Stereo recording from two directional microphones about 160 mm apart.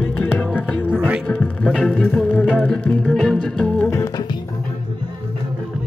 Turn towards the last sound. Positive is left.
turn(degrees=20)  # may be behind; listen again after turning